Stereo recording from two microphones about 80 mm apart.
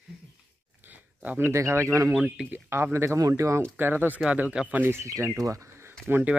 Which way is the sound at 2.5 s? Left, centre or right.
Right.